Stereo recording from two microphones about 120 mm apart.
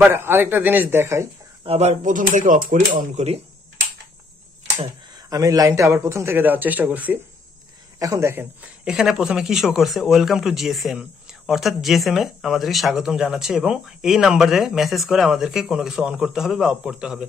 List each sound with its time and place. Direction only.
0.1 s a man's voice: 20° right (ahead or behind)
1.6 s speech: 60° right (ahead or behind); by 3.3 s 80° right
5.1 s a man's voice: 30° right (ahead or behind); by 7.2 s 15° right (ahead or behind)
8.0 s a man's voice: 25° right (ahead or behind)
8.8 s speech: 5° right (ahead or behind)